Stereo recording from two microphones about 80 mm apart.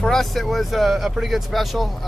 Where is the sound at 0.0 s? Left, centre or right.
Centre.